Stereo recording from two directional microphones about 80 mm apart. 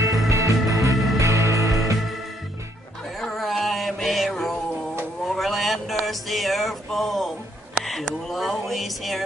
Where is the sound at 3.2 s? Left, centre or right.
Centre.